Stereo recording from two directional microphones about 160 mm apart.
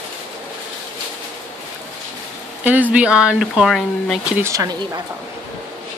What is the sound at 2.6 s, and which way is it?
A woman's voice, 10° right (ahead or behind).